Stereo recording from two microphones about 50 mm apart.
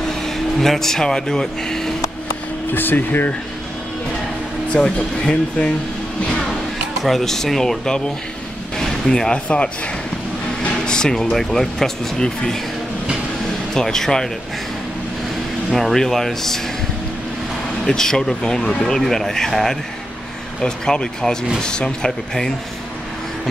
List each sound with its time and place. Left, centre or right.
0.1 s speech: centre
2.7 s speech: left
4.7 s speech: centre
7.0 s speech: centre
10.9 s speech: centre
13.7 s speech: centre
15.7 s speech: centre
17.8 s speech: centre